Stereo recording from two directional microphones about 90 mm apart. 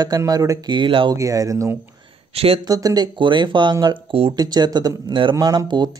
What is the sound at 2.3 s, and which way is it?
Speech, 90° right.